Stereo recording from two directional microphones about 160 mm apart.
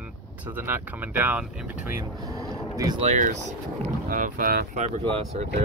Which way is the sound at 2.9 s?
45° right (ahead or behind).